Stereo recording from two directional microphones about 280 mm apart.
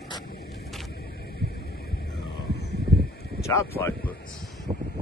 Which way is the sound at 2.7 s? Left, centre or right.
Left.